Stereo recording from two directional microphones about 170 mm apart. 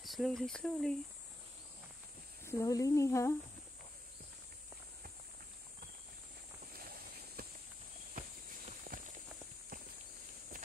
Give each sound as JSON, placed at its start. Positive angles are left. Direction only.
{"t": 0.0, "sound": "speech", "side_deg": 0}
{"t": 2.4, "sound": "speech", "side_deg": 15}
{"t": 6.7, "sound": "boat", "side_deg": -60}
{"t": 8.1, "sound": "walk", "side_deg": -50}